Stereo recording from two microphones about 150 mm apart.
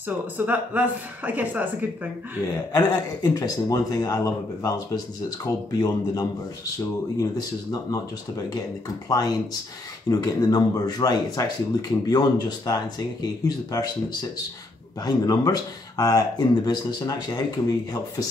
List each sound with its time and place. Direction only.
0.5 s a woman's voice: 10° right (ahead or behind)
2.7 s speech: 25° left (ahead or behind)
15.0 s speech: 25° left (ahead or behind)